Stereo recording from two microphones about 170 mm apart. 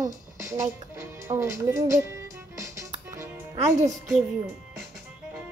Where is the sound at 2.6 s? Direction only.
15° right (ahead or behind).